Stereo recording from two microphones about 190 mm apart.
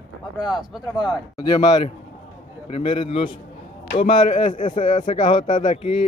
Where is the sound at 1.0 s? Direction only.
20° left (ahead or behind).